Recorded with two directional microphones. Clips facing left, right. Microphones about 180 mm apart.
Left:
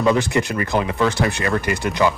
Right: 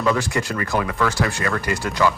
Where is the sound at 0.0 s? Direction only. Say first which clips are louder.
Left 3 dB; 20° left (ahead or behind).